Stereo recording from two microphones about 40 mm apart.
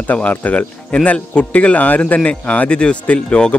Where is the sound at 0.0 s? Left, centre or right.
Left.